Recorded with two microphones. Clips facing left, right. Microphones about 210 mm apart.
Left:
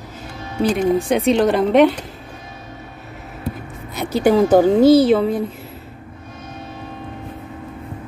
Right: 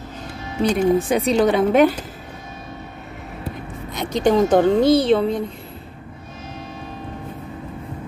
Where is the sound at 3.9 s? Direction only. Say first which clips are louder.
Left 2 dB; 5° left (ahead or behind).